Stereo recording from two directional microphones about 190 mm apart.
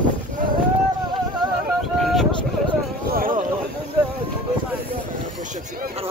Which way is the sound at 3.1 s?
50° right (ahead or behind).